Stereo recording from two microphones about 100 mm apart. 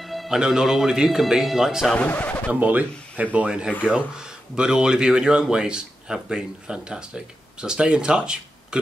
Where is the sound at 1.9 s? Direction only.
15° left (ahead or behind).